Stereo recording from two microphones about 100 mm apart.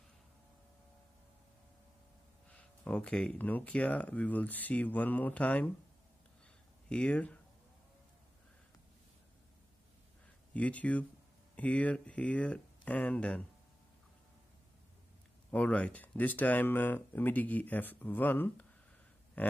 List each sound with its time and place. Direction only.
2.5 s speech: 15° left (ahead or behind)
6.9 s speech: 15° left (ahead or behind)
10.5 s speech: 15° left (ahead or behind)
15.5 s speech: 10° left (ahead or behind)